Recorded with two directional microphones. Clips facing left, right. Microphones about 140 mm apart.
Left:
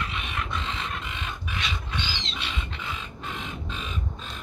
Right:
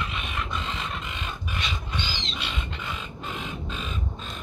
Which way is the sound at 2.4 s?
Centre (ahead or behind).